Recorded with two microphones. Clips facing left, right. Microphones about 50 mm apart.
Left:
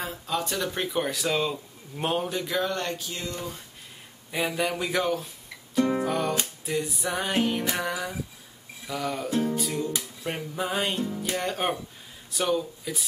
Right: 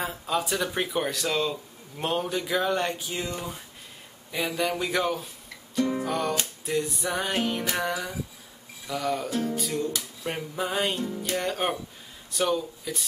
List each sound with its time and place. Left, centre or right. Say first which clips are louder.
0.0 s speech: right 2 dB; centre
4.3 s music: even; centre
5.8 s music: left 2 dB; left
6.0 s music: left 1 dB; centre
12.3 s speech: even; centre